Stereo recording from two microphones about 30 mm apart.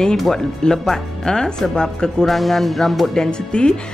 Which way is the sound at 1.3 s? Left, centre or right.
Left.